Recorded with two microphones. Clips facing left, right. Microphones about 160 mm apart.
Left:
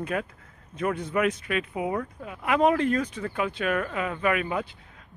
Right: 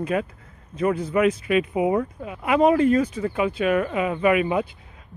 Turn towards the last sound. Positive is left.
turn(degrees=-10)  # may be behind; listen again after turning